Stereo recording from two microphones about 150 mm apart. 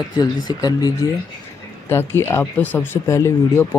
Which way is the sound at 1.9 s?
15° left (ahead or behind).